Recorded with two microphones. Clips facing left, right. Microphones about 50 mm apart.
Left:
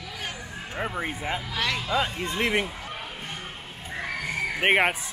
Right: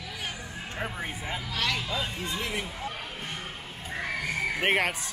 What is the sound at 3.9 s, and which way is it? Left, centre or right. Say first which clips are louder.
Neigh: left 1 dB; centre.